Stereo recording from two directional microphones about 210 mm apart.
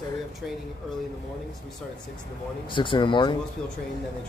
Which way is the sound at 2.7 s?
25° left (ahead or behind).